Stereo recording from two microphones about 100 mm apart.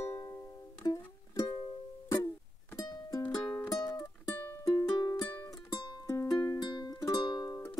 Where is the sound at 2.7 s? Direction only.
40° left (ahead or behind).